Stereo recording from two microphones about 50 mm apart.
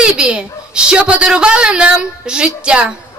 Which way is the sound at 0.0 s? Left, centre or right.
Centre.